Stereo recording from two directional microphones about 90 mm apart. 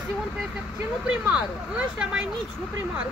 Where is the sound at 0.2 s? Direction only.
10° right (ahead or behind).